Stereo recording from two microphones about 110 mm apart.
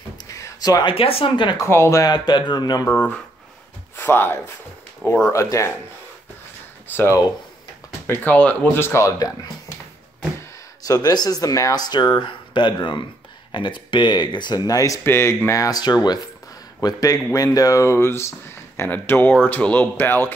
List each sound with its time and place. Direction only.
0.3 s a sound: 30° left (ahead or behind)
0.8 s speech: 60° left (ahead or behind)
1.7 s speech: 25° left (ahead or behind)
2.0 s speech: 40° left (ahead or behind)
3.9 s speech: 20° left (ahead or behind)
6.9 s speech: 15° left (ahead or behind)
8.1 s speech: 15° left (ahead or behind); by 9.5 s 30° left (ahead or behind)
10.8 s speech: 35° left (ahead or behind); by 20.3 s 20° left (ahead or behind)